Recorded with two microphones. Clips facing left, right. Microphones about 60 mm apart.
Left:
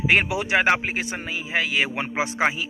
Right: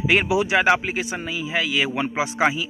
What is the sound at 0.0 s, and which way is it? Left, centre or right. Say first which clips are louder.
A man's voice: right 2 dB; left.